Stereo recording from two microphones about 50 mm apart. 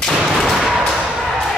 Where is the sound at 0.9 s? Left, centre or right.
Centre.